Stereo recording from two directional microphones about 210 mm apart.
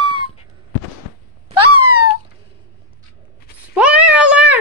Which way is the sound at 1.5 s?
90° right.